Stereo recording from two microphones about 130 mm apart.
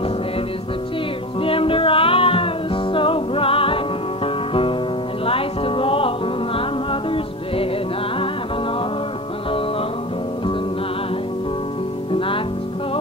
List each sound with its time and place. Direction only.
1.4 s music: 45° left (ahead or behind)
5.2 s music: 45° left (ahead or behind)
12.1 s music: 45° left (ahead or behind)